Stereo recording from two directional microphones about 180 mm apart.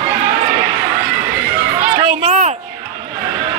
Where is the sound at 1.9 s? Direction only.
35° right (ahead or behind).